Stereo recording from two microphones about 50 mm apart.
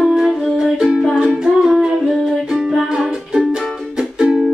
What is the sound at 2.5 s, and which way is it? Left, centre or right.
Music, centre.